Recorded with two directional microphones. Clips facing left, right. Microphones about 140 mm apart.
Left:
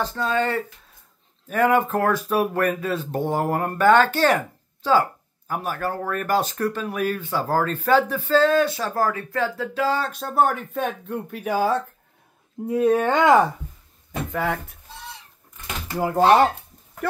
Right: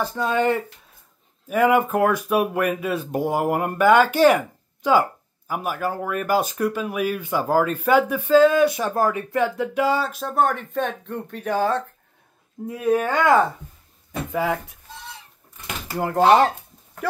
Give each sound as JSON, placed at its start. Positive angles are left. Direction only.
{"t": 0.0, "sound": "speech", "side_deg": -15}
{"t": 12.6, "sound": "speech", "side_deg": 30}
{"t": 14.2, "sound": "speech", "side_deg": 0}
{"t": 15.9, "sound": "speech", "side_deg": 0}